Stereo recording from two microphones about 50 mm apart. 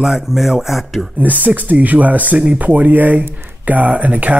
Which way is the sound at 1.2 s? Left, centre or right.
Right.